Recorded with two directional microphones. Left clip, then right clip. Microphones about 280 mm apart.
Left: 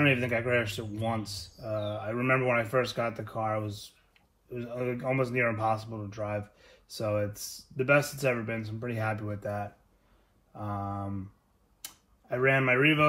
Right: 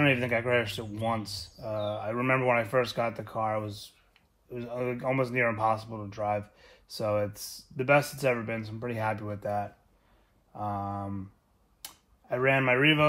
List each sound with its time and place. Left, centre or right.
0.0 s speech: right